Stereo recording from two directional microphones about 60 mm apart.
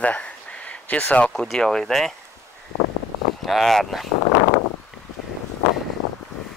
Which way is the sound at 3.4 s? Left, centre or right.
Centre.